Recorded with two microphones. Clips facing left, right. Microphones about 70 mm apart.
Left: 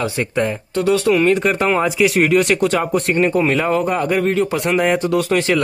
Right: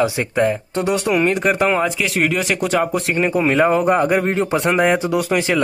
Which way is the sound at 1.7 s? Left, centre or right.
Centre.